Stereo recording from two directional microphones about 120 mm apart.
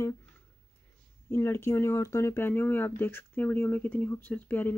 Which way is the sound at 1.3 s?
20° left (ahead or behind).